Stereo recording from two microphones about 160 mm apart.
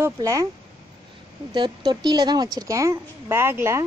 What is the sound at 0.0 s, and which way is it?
Speech, 20° right (ahead or behind).